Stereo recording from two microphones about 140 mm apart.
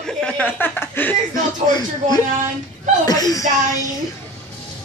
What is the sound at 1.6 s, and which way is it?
A man's voice, 30° left (ahead or behind).